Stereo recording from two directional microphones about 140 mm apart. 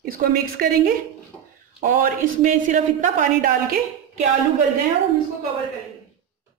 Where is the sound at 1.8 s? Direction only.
75° right (ahead or behind).